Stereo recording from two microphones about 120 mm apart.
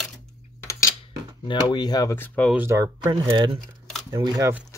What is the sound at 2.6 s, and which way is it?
Speech, 20° right (ahead or behind).